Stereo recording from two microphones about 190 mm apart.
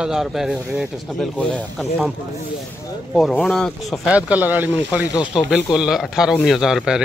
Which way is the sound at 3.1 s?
Centre (ahead or behind).